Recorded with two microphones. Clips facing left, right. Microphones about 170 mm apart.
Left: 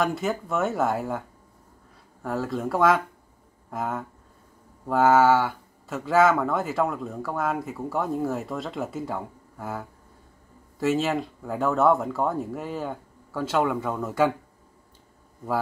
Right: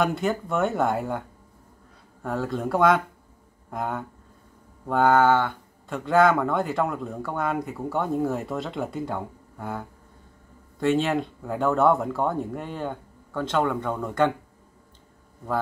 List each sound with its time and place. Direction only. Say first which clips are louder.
0.0 s speech: right 1 dB; centre (ahead or behind)
2.2 s speech: even; centre (ahead or behind)